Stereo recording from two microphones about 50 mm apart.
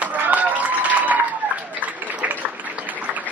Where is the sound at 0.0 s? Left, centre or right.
Right.